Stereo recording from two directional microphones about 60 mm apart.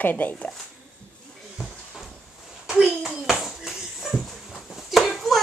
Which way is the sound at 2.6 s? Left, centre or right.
Centre.